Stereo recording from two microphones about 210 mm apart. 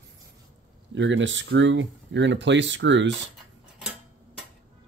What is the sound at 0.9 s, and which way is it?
Speech, 60° right (ahead or behind).